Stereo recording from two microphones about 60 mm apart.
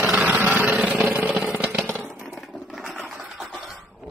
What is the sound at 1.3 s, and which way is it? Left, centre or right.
Vehicle, centre.